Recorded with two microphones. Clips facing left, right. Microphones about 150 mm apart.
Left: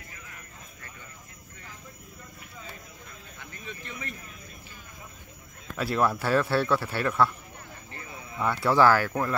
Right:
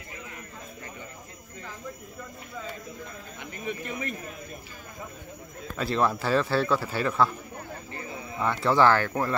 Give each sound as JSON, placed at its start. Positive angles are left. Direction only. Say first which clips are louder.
{"t": 3.6, "sound": "speech", "louder": "right 8 dB", "side_deg": -50}
{"t": 5.8, "sound": "speech", "louder": "even", "side_deg": 5}
{"t": 8.4, "sound": "speech", "louder": "even", "side_deg": 5}